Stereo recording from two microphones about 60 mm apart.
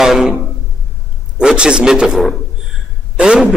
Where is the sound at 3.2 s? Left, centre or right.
Centre.